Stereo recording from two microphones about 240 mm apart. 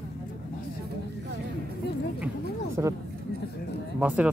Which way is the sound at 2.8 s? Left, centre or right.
Centre.